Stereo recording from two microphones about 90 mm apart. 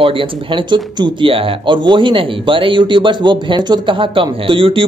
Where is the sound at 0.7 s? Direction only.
55° right (ahead or behind).